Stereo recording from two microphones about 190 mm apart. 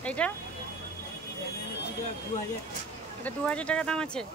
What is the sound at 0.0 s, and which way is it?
Vehicle, 5° left (ahead or behind).